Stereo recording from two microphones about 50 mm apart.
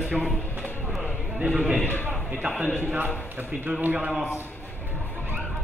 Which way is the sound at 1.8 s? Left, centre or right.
Left.